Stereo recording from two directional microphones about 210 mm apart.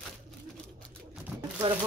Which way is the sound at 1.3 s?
5° right (ahead or behind).